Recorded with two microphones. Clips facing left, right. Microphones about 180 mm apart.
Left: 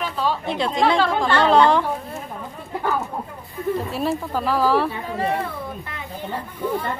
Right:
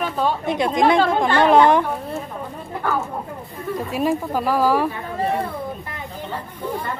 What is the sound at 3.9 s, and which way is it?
Speech, 10° right (ahead or behind).